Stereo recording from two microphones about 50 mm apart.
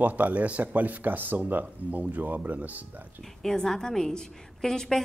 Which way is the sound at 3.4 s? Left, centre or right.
Centre.